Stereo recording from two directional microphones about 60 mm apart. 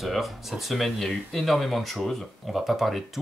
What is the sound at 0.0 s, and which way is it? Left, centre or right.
Speech, centre.